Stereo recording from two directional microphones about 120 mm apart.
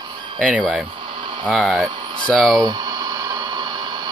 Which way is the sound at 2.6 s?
35° right (ahead or behind).